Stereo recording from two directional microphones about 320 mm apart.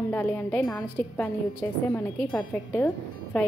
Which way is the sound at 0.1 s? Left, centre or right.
Centre.